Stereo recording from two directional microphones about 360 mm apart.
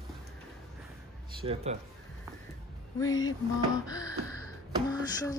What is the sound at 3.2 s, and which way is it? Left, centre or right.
Speech, centre.